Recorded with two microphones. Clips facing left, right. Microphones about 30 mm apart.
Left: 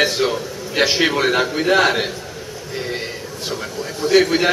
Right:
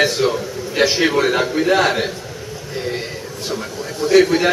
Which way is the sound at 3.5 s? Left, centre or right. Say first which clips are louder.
Right 1 dB; centre.